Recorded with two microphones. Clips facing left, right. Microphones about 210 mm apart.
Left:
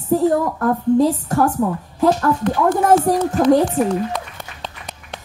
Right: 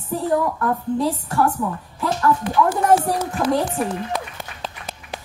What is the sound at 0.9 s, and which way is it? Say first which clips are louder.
Speech: left 6 dB; 45° left (ahead or behind).